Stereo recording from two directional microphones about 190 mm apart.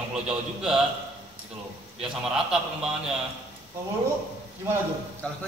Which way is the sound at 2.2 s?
5° right (ahead or behind).